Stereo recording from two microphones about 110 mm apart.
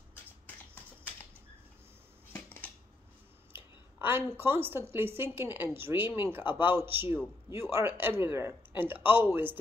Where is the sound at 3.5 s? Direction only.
20° right (ahead or behind).